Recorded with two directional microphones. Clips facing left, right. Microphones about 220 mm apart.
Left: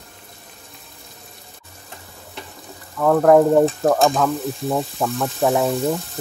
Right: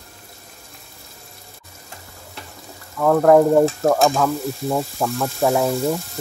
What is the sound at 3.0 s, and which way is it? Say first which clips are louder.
Frying: even; centre (ahead or behind).